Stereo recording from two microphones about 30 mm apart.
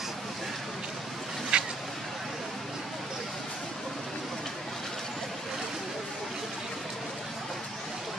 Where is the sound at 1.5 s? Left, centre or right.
Right.